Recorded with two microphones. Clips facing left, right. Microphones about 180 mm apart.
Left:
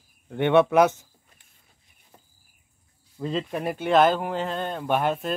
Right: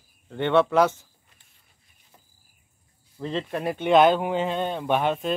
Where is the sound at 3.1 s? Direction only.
5° left (ahead or behind).